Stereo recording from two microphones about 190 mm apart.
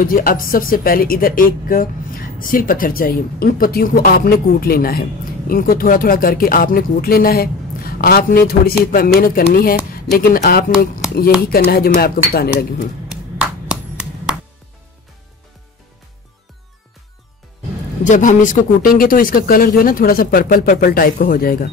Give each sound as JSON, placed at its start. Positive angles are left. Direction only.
{"t": 0.0, "sound": "speech", "side_deg": 50}
{"t": 13.4, "sound": "clapping", "side_deg": -5}
{"t": 18.0, "sound": "speech", "side_deg": 40}